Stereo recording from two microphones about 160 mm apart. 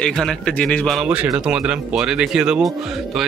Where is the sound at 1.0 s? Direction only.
10° right (ahead or behind).